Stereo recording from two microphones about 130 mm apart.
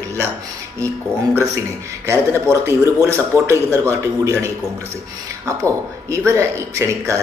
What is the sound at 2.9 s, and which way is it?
Speech, 20° right (ahead or behind).